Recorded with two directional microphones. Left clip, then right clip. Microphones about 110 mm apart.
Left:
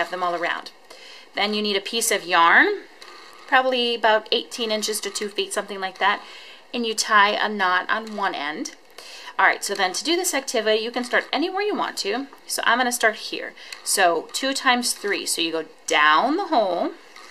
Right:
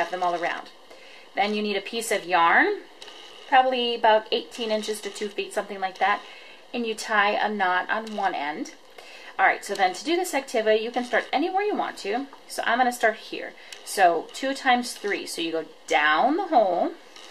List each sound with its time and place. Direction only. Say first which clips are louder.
0.0 s speech: left 1 dB; 35° left (ahead or behind)